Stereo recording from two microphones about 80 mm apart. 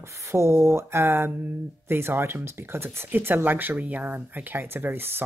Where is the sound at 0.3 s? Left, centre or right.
Right.